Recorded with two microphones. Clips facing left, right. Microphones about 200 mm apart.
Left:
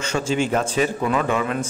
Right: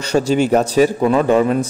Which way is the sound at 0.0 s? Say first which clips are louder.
Right 7 dB; 40° right (ahead or behind).